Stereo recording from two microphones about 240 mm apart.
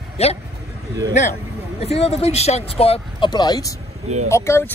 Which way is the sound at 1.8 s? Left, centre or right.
Left.